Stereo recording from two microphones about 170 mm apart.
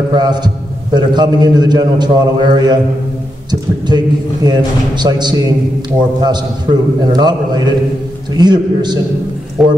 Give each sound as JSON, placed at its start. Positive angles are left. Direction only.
{"t": 0.1, "sound": "a man's voice", "side_deg": -25}
{"t": 3.9, "sound": "a man's voice", "side_deg": -25}
{"t": 9.6, "sound": "speech", "side_deg": -5}